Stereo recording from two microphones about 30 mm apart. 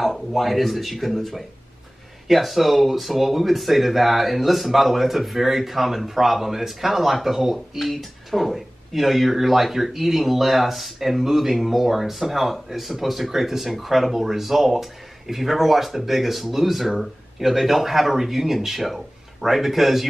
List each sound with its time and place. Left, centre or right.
0.0 s a man's voice: centre